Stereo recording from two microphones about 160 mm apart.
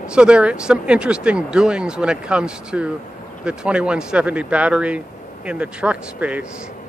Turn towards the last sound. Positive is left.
turn(degrees=-10)  # may be behind; listen again after turning